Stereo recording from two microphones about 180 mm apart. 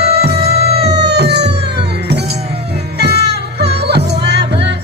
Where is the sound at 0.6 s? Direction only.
65° right (ahead or behind).